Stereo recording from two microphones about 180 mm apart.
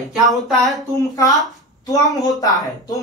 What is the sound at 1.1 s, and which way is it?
A woman's voice, 20° left (ahead or behind).